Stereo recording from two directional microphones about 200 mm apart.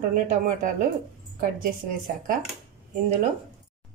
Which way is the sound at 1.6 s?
45° right (ahead or behind).